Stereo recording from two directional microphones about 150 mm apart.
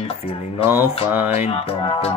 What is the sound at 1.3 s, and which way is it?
Music, 40° left (ahead or behind).